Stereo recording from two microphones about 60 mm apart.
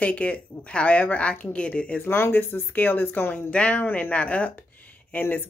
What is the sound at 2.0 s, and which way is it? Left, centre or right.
Speech, left.